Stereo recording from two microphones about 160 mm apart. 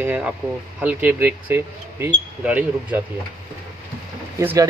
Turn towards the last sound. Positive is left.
turn(degrees=-20)  # may be behind; listen again after turning